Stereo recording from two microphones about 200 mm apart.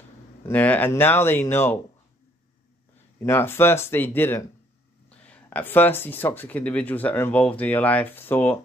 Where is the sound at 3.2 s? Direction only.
10° left (ahead or behind).